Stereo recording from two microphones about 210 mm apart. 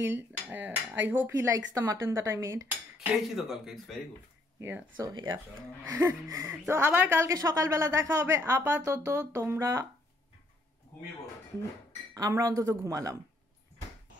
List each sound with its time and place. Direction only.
0.7 s speech: 10° right (ahead or behind)
3.3 s speech: centre (ahead or behind)
4.6 s speech: 10° right (ahead or behind)
12.1 s speech: 15° right (ahead or behind)